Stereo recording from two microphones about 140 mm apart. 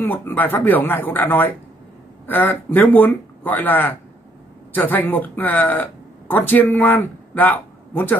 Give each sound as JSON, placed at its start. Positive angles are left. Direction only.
{"t": 0.0, "sound": "speech", "side_deg": 15}